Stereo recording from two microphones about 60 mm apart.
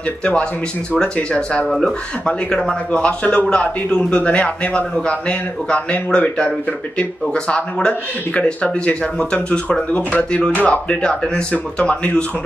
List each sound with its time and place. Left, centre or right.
0.2 s a man's voice: centre
1.7 s speech: centre
2.2 s a man's voice: centre